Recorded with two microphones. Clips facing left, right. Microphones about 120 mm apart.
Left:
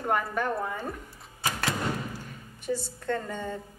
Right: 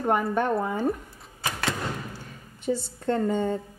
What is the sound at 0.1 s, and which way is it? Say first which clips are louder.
Speech: right 4 dB; 25° right (ahead or behind).